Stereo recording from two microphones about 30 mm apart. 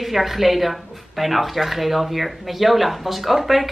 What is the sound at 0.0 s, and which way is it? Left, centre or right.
Speech, centre.